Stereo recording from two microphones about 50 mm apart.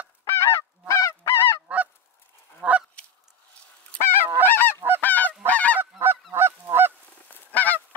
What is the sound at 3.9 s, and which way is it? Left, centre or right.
Goose, left.